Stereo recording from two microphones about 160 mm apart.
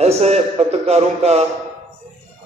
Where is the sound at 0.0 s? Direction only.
40° right (ahead or behind).